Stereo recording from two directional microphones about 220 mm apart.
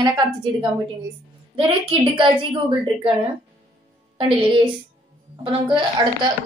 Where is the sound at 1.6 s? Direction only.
25° right (ahead or behind).